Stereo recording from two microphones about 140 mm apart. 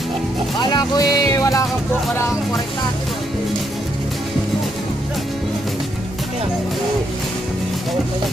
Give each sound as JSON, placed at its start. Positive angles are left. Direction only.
{"t": 0.6, "sound": "speech", "side_deg": 30}